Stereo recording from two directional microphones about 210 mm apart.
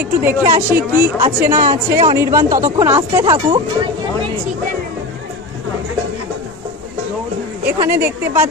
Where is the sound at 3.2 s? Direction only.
20° right (ahead or behind).